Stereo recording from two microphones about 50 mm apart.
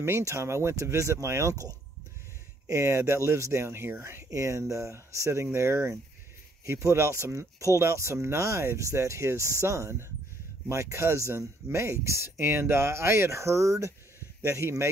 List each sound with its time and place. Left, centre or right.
0.0 s speech: right
2.7 s speech: right
4.1 s speech: right
6.6 s speech: right
14.4 s speech: right